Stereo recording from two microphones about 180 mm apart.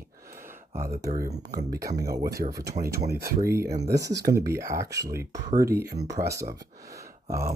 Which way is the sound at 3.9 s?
20° right (ahead or behind).